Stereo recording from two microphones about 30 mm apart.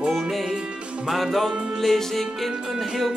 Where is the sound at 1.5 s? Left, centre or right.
Right.